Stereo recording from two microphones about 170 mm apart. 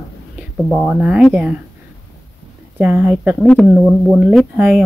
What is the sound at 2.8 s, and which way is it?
Speech, 10° right (ahead or behind).